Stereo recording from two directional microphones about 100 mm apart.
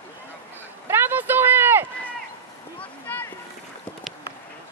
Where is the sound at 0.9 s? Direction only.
20° right (ahead or behind).